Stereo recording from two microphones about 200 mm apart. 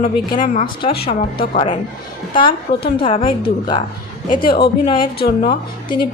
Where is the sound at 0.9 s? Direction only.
50° left (ahead or behind).